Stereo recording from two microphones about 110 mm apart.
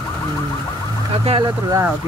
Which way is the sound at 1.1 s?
65° right (ahead or behind).